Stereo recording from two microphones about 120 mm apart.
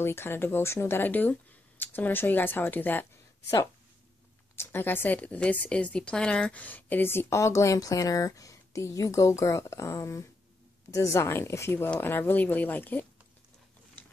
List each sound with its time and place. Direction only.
0.0 s speech: 20° left (ahead or behind)
4.6 s a woman's voice: 15° left (ahead or behind)